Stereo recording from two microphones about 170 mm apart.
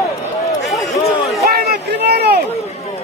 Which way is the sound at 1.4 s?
65° right (ahead or behind).